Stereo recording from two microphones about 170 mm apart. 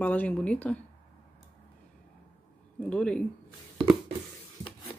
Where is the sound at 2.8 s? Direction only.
5° left (ahead or behind).